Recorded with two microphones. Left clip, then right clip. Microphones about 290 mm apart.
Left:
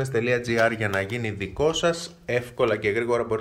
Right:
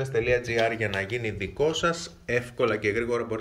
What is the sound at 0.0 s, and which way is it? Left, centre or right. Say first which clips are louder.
Speech: left 1 dB; left.